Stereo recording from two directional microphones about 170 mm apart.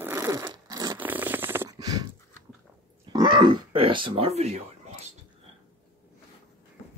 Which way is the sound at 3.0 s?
25° right (ahead or behind).